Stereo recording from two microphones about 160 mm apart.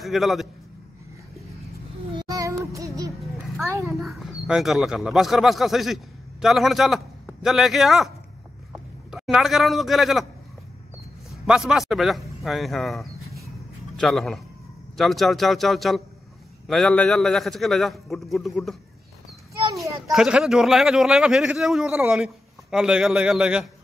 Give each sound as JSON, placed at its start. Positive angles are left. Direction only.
{"t": 0.0, "sound": "speech", "side_deg": 0}
{"t": 2.1, "sound": "music", "side_deg": -20}
{"t": 3.6, "sound": "a child's voice", "side_deg": -20}
{"t": 4.0, "sound": "a man's voice", "side_deg": 0}
{"t": 9.1, "sound": "speech", "side_deg": 0}
{"t": 11.2, "sound": "a man's voice", "side_deg": 0}
{"t": 19.6, "sound": "a sound", "side_deg": -20}
{"t": 20.1, "sound": "speech", "side_deg": -5}